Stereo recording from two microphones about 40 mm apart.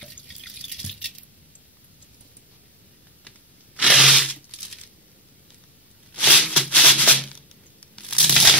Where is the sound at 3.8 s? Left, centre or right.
Centre.